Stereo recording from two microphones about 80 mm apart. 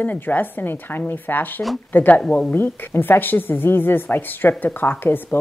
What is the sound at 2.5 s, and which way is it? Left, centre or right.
A woman's voice, left.